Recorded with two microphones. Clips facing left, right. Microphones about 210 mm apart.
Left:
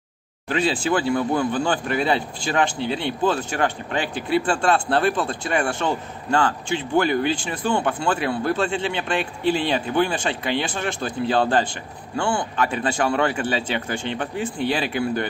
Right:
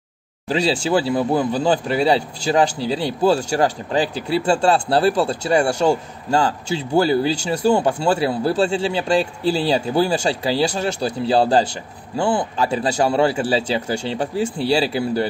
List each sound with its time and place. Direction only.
0.5 s a man's voice: 30° right (ahead or behind)